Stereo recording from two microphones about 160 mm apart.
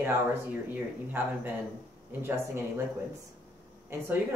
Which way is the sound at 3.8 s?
15° right (ahead or behind).